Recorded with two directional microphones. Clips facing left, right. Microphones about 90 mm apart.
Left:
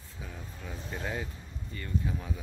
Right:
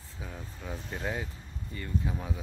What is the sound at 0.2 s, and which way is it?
Speech, 15° right (ahead or behind).